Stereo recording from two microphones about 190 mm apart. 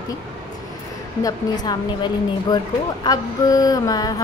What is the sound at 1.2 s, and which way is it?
A woman's voice, 20° left (ahead or behind).